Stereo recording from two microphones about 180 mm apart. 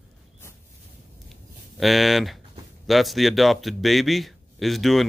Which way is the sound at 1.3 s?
Centre (ahead or behind).